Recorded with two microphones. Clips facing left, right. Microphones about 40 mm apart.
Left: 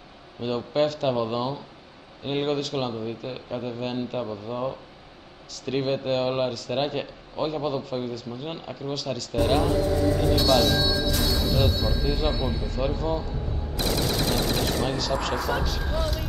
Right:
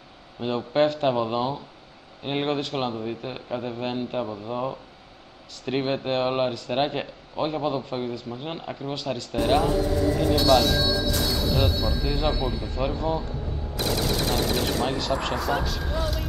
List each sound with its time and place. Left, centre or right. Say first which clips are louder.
0.4 s a man's voice: right 2 dB; right
5.7 s speech: even; right
8.4 s a man's voice: right 1 dB; centre
8.9 s speech: even; right
9.4 s speech: right 1 dB; centre
12.6 s a man's voice: even; centre
13.7 s gunshot: even; centre
15.0 s speech: right 1 dB; right
15.3 s speech: right 1 dB; centre